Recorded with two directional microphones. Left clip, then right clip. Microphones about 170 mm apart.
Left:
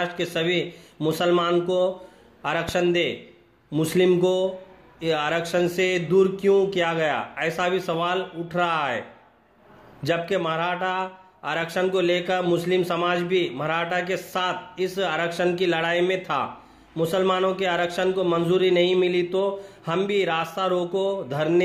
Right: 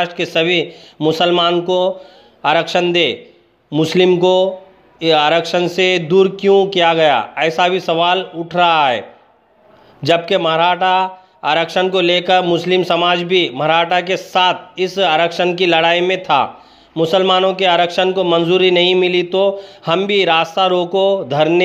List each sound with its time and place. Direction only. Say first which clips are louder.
0.0 s a man's voice: right 9 dB; 35° right (ahead or behind)
10.0 s a man's voice: right 10 dB; 40° right (ahead or behind)